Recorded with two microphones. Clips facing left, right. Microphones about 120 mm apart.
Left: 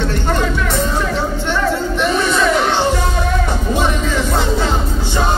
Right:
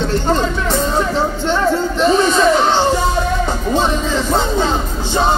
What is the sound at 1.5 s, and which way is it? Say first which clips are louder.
Music: right 2 dB; 30° right (ahead or behind).